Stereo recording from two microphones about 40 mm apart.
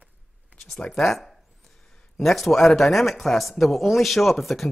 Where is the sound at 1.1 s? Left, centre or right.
Centre.